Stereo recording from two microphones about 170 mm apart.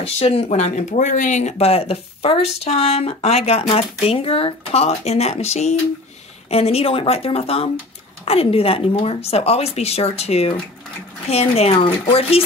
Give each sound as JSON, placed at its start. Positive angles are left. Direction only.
{"t": 0.0, "sound": "speech", "side_deg": 35}